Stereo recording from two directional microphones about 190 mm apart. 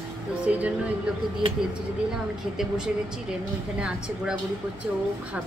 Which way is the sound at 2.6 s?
5° right (ahead or behind).